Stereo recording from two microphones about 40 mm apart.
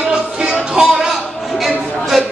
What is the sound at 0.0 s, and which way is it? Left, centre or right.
Music, right.